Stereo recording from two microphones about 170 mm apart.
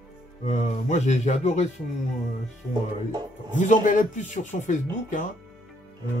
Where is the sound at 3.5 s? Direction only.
50° left (ahead or behind).